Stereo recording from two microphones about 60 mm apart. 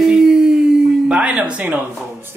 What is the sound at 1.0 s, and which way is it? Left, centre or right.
Speech, centre.